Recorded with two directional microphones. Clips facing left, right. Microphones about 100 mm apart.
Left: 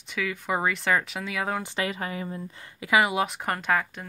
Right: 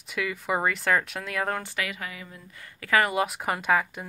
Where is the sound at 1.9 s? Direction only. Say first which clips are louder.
Left 6 dB; 35° left (ahead or behind).